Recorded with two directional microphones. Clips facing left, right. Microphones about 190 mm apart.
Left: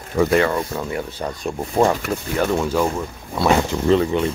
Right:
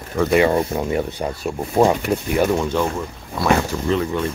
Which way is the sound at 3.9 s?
35° left (ahead or behind).